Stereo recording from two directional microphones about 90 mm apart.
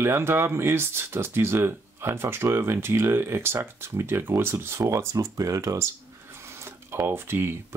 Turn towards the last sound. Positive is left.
turn(degrees=-25)  # may be behind; listen again after turning